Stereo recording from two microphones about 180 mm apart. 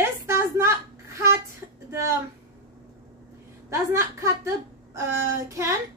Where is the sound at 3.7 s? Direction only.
15° right (ahead or behind).